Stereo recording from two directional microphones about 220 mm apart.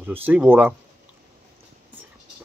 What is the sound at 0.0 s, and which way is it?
Speech, 10° right (ahead or behind).